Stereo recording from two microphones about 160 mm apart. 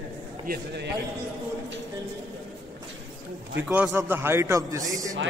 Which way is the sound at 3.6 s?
10° right (ahead or behind).